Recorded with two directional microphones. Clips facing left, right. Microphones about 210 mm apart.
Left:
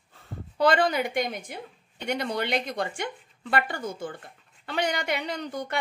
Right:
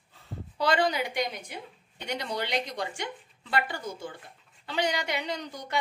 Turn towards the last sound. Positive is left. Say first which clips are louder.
# left 4 dB
turn(degrees=55)  # may be behind; listen again after turning